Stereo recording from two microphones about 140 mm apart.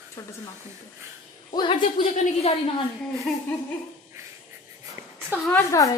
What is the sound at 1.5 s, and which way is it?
A woman's voice, 35° left (ahead or behind).